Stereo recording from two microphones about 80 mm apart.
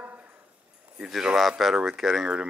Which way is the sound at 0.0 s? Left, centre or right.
Right.